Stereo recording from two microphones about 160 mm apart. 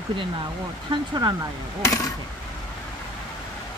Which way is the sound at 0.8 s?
25° right (ahead or behind).